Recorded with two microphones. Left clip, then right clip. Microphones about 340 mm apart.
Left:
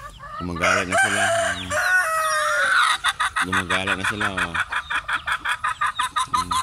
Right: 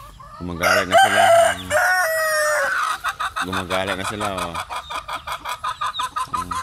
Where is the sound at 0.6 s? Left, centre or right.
Right.